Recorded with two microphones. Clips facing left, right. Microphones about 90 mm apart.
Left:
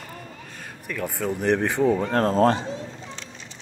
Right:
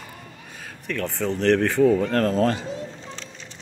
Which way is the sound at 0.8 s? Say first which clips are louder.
Right 1 dB; 10° left (ahead or behind).